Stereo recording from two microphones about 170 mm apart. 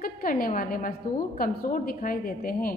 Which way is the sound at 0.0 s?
55° left (ahead or behind).